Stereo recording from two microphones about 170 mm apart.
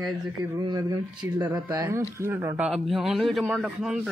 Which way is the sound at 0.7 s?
20° right (ahead or behind).